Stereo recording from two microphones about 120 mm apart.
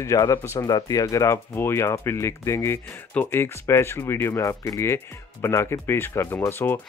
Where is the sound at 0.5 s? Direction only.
35° left (ahead or behind).